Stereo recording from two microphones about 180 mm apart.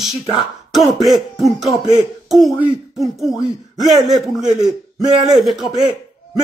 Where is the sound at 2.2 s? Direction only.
Centre (ahead or behind).